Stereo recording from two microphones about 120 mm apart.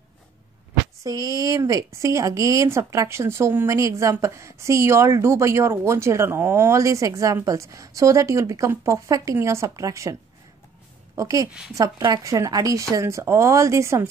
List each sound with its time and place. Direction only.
1.0 s speech: 30° right (ahead or behind)
11.1 s speech: 30° right (ahead or behind)